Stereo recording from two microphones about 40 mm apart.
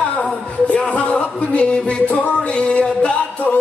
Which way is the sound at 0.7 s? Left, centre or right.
Left.